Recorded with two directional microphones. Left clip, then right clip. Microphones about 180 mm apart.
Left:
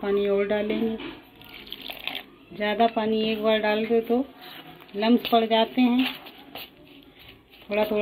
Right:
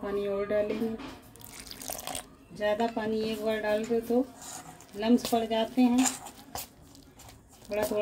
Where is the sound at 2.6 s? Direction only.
10° left (ahead or behind).